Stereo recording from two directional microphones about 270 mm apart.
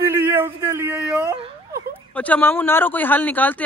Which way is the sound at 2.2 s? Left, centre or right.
Centre.